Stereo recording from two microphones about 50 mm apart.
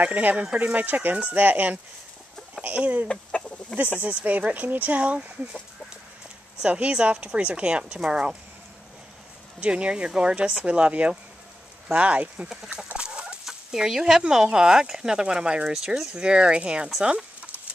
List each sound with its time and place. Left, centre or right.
0.0 s speech: right
3.1 s chicken: left
4.0 s speech: right
6.7 s speech: right
9.6 s speech: right
12.8 s chicken: right
13.5 s speech: centre